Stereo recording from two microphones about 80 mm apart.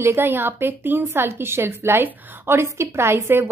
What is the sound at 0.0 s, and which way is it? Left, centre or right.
A woman's voice, right.